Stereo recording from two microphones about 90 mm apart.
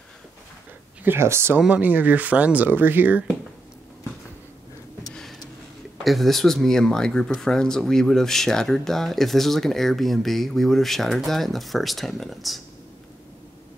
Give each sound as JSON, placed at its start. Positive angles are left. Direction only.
{"t": 1.0, "sound": "speech", "side_deg": -30}
{"t": 1.6, "sound": "speech", "side_deg": -15}
{"t": 6.0, "sound": "speech", "side_deg": 0}